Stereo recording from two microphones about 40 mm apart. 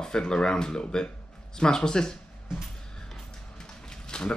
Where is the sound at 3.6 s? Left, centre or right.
Centre.